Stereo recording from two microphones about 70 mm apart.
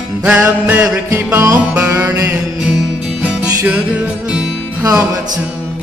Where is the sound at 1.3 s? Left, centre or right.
Right.